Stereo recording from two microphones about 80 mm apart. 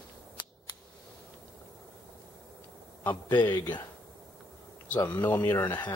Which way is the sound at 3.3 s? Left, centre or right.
Left.